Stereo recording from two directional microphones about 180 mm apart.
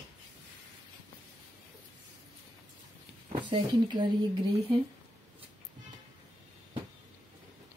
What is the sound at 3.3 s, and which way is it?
Speech, 25° right (ahead or behind).